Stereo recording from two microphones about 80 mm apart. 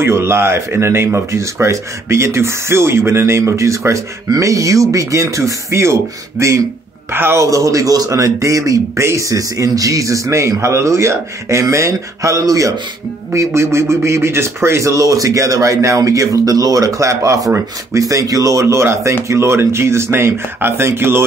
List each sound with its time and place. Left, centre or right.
0.0 s speech: right
7.4 s speech: right